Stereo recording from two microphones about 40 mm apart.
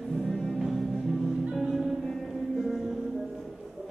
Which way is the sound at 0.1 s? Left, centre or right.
Centre.